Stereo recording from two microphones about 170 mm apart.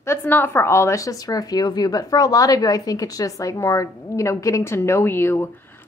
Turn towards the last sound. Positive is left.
turn(degrees=15)  # may be behind; listen again after turning